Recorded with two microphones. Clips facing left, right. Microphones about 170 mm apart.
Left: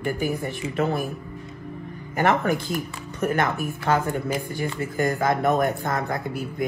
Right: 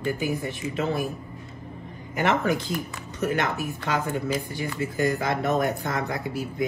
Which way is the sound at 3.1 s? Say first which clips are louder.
Left 2 dB; 55° left (ahead or behind).